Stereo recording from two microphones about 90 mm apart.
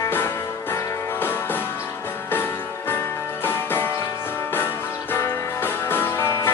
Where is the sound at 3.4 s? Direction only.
25° left (ahead or behind).